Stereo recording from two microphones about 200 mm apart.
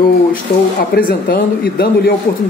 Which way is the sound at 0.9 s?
50° left (ahead or behind).